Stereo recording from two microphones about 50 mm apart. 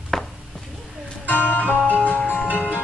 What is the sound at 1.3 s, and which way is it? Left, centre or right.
Music, left.